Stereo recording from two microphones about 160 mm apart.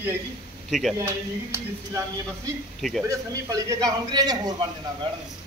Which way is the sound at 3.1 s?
20° right (ahead or behind).